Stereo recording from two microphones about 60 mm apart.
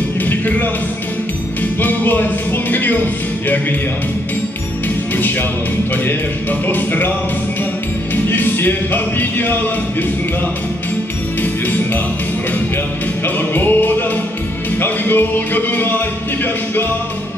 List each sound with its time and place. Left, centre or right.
0.2 s music: left
1.8 s speech: left
4.8 s music: left
6.7 s music: left
8.3 s music: left
13.2 s music: left